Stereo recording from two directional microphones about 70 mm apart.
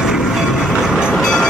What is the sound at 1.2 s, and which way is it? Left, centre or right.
Vehicle, centre.